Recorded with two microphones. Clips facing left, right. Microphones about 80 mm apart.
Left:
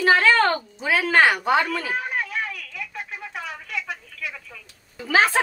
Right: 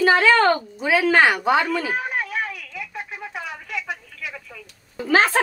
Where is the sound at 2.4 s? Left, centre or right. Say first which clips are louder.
Right 1 dB; centre.